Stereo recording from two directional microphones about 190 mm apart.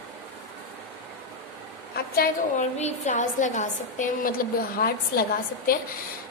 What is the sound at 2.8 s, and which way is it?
A woman's voice, 35° left (ahead or behind).